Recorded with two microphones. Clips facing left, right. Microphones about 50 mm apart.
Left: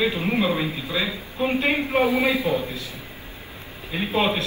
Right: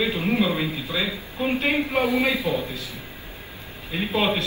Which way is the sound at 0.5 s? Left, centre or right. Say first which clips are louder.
Left 1 dB; centre.